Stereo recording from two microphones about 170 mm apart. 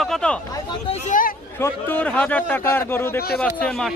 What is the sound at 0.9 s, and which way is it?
Speech, 50° left (ahead or behind).